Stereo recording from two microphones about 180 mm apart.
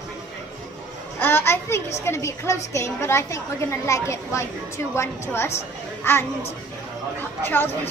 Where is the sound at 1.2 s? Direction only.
10° left (ahead or behind).